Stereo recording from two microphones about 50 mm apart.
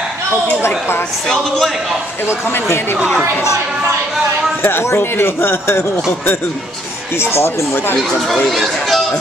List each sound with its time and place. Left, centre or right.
0.6 s speech: left
1.2 s speech: centre
2.2 s speech: left
4.8 s speech: left
8.5 s speech: centre